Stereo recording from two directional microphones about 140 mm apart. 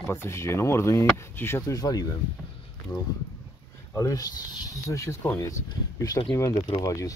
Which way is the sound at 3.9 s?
25° left (ahead or behind).